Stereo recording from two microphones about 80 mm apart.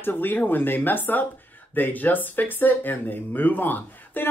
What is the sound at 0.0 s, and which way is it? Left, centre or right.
Speech, left.